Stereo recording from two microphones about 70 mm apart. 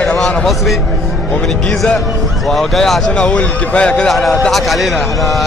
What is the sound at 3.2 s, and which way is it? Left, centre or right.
Speech, centre.